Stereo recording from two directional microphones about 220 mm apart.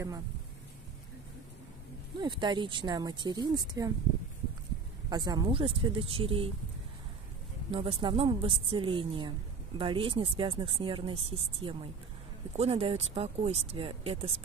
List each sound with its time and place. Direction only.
2.1 s speech: 20° right (ahead or behind)
5.1 s speech: 20° right (ahead or behind)
7.7 s speech: 25° right (ahead or behind)